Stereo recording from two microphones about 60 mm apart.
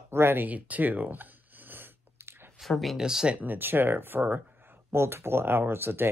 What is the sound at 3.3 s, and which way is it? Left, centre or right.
Speech, right.